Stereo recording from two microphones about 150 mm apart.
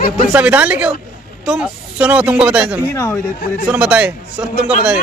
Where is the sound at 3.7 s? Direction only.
10° right (ahead or behind).